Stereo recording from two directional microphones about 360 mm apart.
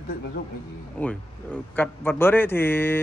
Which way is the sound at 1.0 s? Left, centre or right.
Centre.